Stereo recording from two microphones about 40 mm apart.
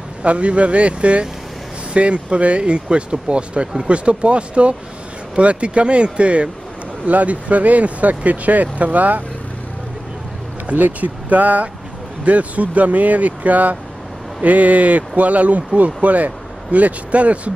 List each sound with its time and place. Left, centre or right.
0.2 s speech: right
10.7 s speech: right